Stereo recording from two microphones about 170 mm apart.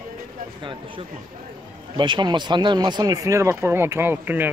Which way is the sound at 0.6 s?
30° right (ahead or behind).